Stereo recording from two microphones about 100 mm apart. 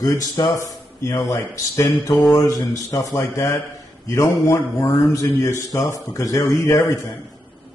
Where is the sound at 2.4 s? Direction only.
35° left (ahead or behind).